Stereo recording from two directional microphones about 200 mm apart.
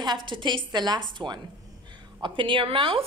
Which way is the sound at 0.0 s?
25° right (ahead or behind).